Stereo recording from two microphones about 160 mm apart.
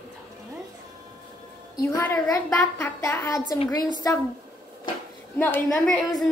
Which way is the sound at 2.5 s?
15° left (ahead or behind).